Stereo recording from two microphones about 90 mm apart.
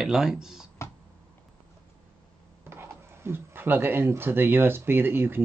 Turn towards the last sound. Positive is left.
turn(degrees=-25)  # may be behind; listen again after turning